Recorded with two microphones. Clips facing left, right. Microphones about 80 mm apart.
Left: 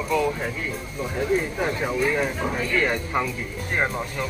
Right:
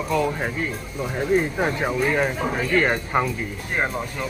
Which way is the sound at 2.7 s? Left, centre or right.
Right.